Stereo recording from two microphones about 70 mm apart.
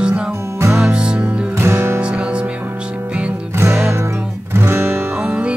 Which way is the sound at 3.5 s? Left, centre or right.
Right.